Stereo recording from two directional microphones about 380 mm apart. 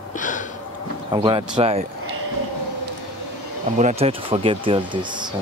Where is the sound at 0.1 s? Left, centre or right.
Centre.